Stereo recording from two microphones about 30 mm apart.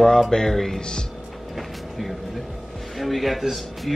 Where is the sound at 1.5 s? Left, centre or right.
Centre.